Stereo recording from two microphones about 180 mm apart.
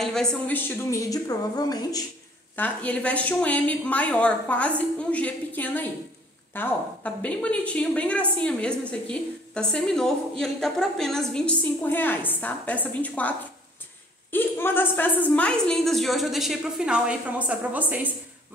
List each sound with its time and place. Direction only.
0.0 s a woman's voice: 5° left (ahead or behind); by 2.0 s 20° left (ahead or behind)
2.5 s a woman's voice: 10° left (ahead or behind)
14.3 s a woman's voice: 10° left (ahead or behind); by 18.1 s 10° right (ahead or behind)